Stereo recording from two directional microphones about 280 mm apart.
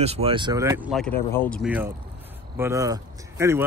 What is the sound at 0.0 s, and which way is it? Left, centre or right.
Speech, right.